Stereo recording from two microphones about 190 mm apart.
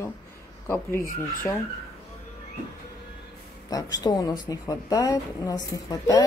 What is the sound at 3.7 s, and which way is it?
A woman's voice, 20° left (ahead or behind).